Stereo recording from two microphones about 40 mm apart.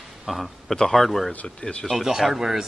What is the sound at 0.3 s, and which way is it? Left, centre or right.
A man's voice, centre.